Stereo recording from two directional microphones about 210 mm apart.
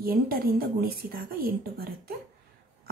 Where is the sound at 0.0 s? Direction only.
45° right (ahead or behind).